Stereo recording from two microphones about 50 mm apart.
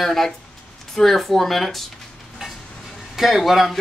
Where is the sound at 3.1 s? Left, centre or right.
Centre.